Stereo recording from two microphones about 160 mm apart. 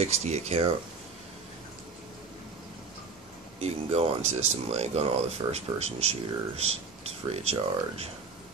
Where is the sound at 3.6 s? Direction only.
40° right (ahead or behind).